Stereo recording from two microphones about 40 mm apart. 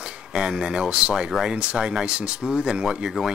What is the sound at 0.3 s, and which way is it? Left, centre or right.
Speech, centre.